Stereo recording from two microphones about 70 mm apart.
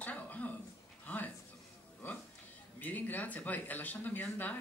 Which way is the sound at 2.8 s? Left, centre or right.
Left.